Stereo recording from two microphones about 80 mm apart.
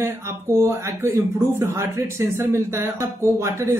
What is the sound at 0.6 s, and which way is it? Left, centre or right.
Speech, right.